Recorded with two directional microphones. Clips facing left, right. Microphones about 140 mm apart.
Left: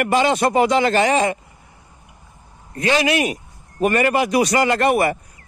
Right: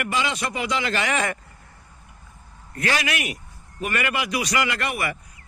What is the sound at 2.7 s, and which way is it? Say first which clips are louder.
A man's voice: left 7 dB; 25° left (ahead or behind).